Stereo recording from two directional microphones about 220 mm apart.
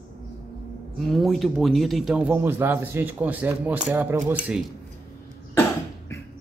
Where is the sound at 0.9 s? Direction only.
Centre (ahead or behind).